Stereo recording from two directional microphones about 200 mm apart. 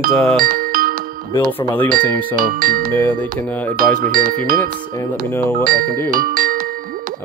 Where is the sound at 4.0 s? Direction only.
45° right (ahead or behind).